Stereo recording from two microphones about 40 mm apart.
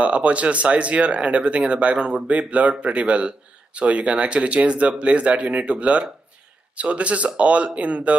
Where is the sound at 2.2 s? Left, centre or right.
Right.